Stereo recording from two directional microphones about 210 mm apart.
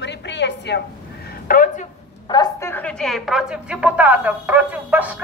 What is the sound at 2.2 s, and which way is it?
A woman's voice, 20° left (ahead or behind).